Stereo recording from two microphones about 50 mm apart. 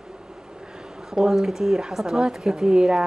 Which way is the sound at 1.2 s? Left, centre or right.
Centre.